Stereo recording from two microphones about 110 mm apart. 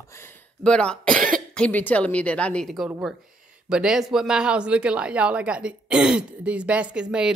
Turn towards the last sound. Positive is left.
turn(degrees=-10)  # may be behind; listen again after turning